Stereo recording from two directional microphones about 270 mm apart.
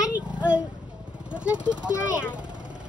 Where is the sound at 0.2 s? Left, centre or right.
Centre.